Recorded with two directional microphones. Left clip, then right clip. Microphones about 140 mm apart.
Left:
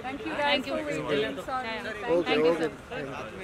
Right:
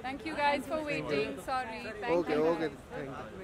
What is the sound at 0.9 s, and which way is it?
Speech, 5° left (ahead or behind).